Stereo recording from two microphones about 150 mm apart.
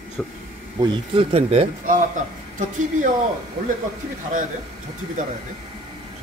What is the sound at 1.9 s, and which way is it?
Speech, 60° right (ahead or behind).